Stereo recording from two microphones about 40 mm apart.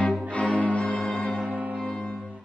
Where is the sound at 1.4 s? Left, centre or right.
Right.